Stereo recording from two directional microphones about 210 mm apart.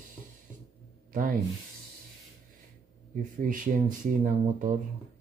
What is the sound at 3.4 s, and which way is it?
Speech, 40° right (ahead or behind).